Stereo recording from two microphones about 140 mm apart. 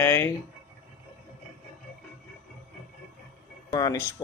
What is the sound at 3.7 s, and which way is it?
Speech, 30° left (ahead or behind).